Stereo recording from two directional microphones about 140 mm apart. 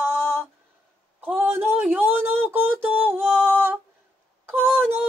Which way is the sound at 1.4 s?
10° right (ahead or behind).